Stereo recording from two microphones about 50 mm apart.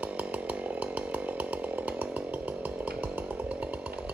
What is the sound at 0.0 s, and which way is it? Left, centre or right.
Chainsaw, right.